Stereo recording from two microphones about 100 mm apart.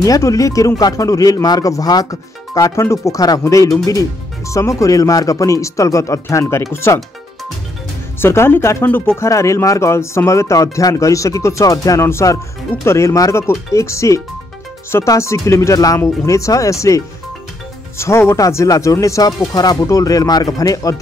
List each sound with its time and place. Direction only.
0.0 s speech: 35° left (ahead or behind)
8.2 s speech: 25° left (ahead or behind)